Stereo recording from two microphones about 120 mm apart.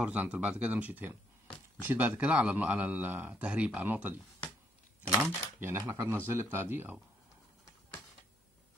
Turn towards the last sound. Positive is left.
turn(degrees=-20)  # may be behind; listen again after turning